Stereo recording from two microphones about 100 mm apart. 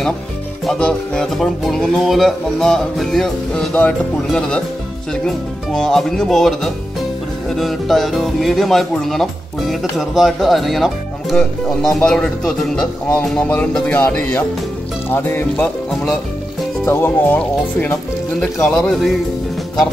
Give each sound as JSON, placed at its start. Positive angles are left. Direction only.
{"t": 0.7, "sound": "speech", "side_deg": 10}
{"t": 16.8, "sound": "speech", "side_deg": 20}